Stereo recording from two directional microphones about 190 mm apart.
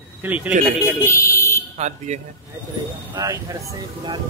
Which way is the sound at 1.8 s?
40° right (ahead or behind).